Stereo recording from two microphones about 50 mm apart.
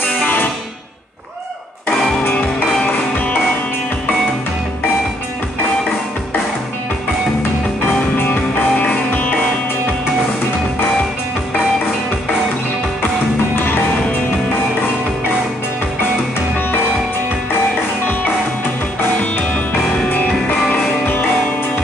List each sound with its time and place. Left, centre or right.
0.2 s music: left
8.2 s music: left